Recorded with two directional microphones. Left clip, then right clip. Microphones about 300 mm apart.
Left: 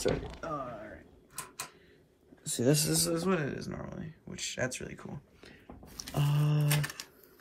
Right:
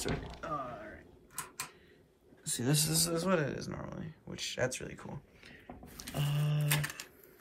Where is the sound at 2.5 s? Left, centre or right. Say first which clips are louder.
Left 5 dB; right.